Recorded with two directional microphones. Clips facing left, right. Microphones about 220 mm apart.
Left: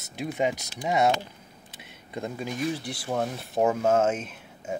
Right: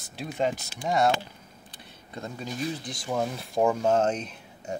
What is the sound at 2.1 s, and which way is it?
Speech, 10° left (ahead or behind).